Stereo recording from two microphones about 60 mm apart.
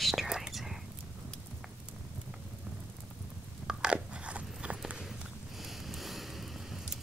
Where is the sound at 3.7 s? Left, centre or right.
Centre.